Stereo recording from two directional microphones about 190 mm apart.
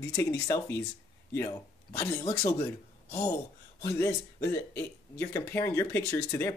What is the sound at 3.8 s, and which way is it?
Speech, 15° left (ahead or behind).